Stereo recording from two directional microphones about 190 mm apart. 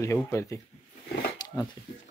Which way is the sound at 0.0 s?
15° left (ahead or behind).